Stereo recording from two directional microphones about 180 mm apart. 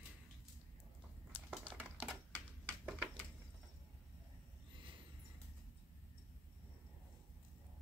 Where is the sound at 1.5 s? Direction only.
10° right (ahead or behind).